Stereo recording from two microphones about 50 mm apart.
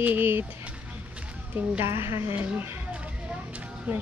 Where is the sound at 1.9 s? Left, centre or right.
Right.